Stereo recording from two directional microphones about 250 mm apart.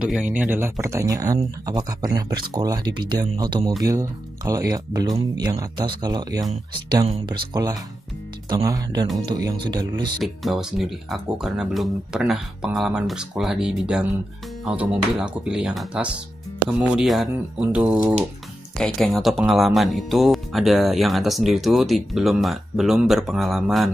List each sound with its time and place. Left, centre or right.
0.0 s speech: centre
10.1 s speech: centre